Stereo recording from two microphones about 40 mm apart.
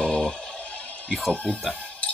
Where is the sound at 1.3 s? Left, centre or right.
Left.